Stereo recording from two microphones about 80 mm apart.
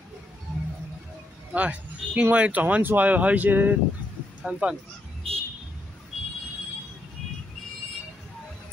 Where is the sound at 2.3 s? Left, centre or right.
Centre.